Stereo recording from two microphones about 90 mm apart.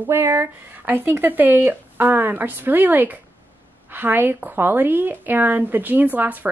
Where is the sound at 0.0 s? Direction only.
25° right (ahead or behind).